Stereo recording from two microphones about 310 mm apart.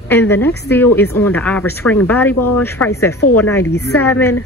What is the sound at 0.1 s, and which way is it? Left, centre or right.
Speech, centre.